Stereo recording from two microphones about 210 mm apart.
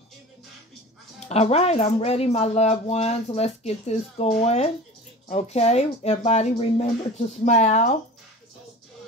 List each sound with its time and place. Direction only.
1.2 s speech: 30° left (ahead or behind)